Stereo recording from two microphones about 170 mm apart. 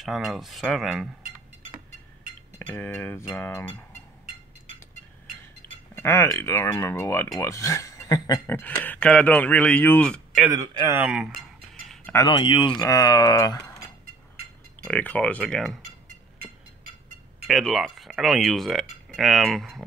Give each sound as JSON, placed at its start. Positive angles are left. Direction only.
{"t": 0.0, "sound": "speech", "side_deg": 0}
{"t": 2.6, "sound": "speech", "side_deg": 10}
{"t": 5.6, "sound": "a sound", "side_deg": 10}
{"t": 5.9, "sound": "speech", "side_deg": 15}
{"t": 10.5, "sound": "a man's voice", "side_deg": -20}
{"t": 11.0, "sound": "speech", "side_deg": -5}
{"t": 12.3, "sound": "speech", "side_deg": 30}
{"t": 14.8, "sound": "speech", "side_deg": 10}
{"t": 17.5, "sound": "speech", "side_deg": 0}